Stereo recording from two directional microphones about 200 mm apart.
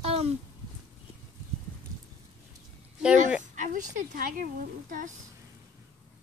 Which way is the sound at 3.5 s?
40° right (ahead or behind).